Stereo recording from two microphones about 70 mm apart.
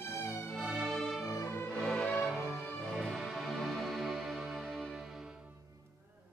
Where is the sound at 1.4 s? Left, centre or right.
Left.